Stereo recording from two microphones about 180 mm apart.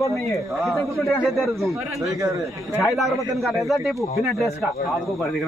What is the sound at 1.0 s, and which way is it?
A man's voice, centre (ahead or behind).